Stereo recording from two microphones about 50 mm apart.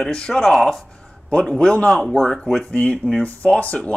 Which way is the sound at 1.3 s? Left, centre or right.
Left.